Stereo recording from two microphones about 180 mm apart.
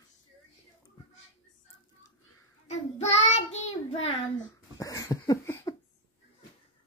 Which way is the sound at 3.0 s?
35° left (ahead or behind).